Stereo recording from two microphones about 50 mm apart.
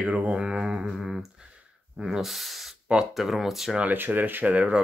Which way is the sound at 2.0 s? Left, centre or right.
Centre.